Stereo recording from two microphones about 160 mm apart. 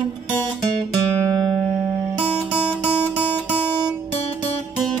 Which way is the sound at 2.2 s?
10° left (ahead or behind).